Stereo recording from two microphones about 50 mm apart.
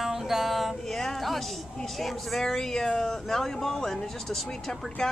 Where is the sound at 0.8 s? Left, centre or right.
Centre.